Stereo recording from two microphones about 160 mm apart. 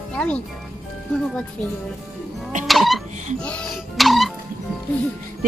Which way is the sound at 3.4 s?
5° left (ahead or behind).